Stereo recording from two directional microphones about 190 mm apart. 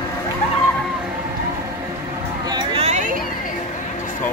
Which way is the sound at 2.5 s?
30° right (ahead or behind).